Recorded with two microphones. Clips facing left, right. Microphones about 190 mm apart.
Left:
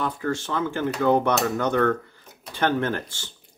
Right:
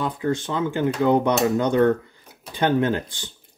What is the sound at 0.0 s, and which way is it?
Speech, 15° right (ahead or behind).